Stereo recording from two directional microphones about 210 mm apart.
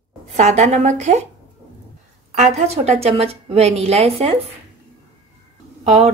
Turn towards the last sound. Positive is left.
turn(degrees=-30)  # may be behind; listen again after turning